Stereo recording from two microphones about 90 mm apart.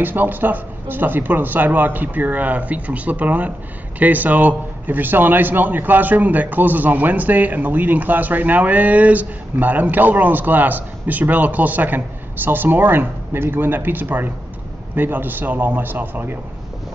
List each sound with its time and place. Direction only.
0.0 s a man's voice: 20° right (ahead or behind)